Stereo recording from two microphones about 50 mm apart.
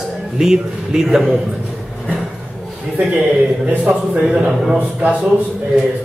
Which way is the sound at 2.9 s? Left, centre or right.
Right.